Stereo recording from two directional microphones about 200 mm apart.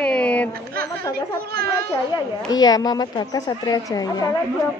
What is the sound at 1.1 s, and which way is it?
Speech, 50° right (ahead or behind).